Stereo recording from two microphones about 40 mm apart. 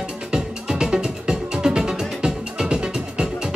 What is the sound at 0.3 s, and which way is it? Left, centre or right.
Music, centre.